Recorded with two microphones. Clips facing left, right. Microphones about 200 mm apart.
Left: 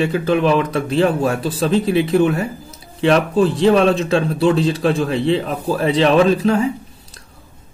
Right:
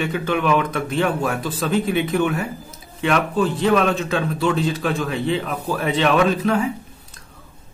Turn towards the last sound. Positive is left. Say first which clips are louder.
# left 4 dB
turn(degrees=30)  # may be behind; listen again after turning